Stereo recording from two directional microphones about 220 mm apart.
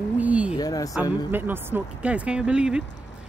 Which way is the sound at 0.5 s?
15° left (ahead or behind).